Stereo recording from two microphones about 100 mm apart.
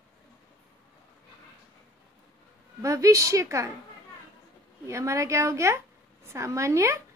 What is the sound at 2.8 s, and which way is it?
Speech, 30° right (ahead or behind).